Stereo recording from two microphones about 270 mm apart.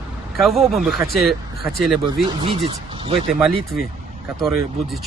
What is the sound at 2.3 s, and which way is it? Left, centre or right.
Speech, centre.